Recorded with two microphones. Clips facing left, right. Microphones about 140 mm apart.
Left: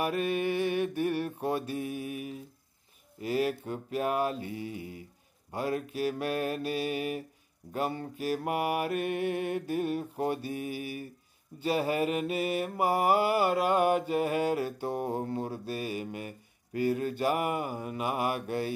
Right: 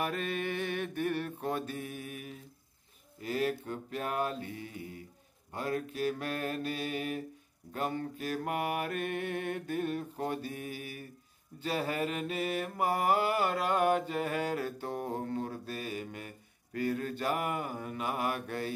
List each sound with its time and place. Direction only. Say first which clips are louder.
0.0 s mantra: left 5 dB; 10° left (ahead or behind)